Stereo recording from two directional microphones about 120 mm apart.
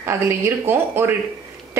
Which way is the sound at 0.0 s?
20° right (ahead or behind).